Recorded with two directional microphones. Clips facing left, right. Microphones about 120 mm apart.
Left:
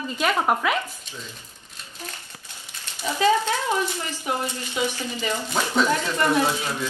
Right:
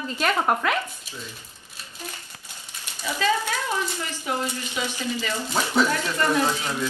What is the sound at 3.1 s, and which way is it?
A woman's voice, 20° left (ahead or behind).